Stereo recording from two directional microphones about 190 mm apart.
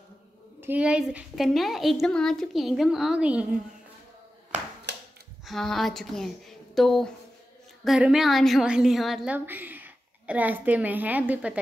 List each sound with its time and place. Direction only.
0.6 s a woman's voice: 10° right (ahead or behind)
4.9 s a sound: 65° right (ahead or behind)
5.4 s a woman's voice: centre (ahead or behind)